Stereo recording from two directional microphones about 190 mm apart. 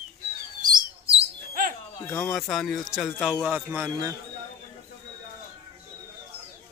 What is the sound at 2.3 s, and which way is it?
Speech, 5° left (ahead or behind).